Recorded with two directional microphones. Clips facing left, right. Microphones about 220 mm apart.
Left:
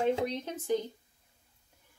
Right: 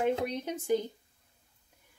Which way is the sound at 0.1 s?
10° right (ahead or behind).